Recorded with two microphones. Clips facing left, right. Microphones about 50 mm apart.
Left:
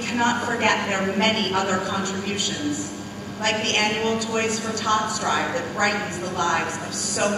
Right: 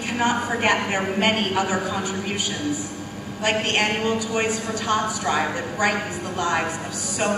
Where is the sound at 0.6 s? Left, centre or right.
Centre.